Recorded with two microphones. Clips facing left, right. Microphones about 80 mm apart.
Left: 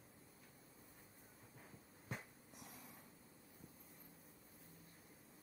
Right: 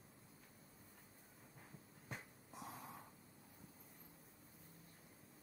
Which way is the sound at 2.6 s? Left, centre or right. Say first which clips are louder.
Right 8 dB; right.